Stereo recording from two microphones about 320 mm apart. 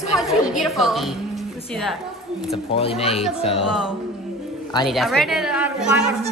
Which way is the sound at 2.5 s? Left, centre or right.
Centre.